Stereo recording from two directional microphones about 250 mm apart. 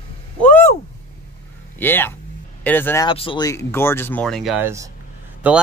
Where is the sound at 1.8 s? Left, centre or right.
Centre.